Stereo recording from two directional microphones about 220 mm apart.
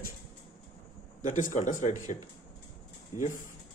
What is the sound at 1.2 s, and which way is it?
Speech, 35° left (ahead or behind).